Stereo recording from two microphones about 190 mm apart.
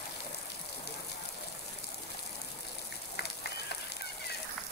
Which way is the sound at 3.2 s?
60° left (ahead or behind).